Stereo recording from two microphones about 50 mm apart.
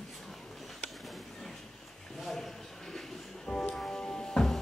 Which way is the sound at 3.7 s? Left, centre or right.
Centre.